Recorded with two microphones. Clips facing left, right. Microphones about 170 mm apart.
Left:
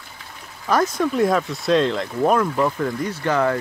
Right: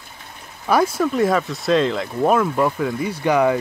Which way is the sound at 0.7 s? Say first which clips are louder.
Right 2 dB; 10° right (ahead or behind).